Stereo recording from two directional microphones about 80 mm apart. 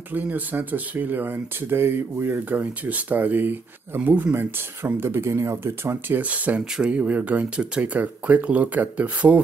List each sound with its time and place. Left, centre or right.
0.1 s speech: right